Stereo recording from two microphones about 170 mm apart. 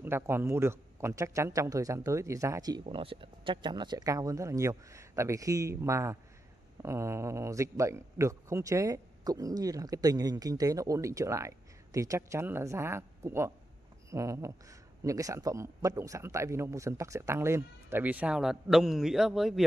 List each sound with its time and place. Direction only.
0.0 s a man's voice: 15° right (ahead or behind)
2.8 s a man's voice: 35° right (ahead or behind); by 19.6 s centre (ahead or behind)